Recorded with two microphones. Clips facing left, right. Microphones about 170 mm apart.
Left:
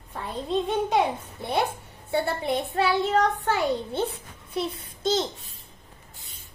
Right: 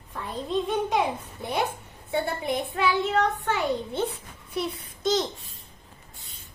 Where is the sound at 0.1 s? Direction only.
30° left (ahead or behind).